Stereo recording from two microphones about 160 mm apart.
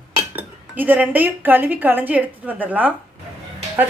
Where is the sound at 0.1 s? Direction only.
10° right (ahead or behind).